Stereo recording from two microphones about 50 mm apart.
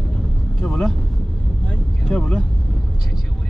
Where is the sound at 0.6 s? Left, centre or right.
Centre.